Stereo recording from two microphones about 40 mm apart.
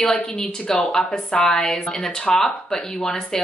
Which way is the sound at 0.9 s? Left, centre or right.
Centre.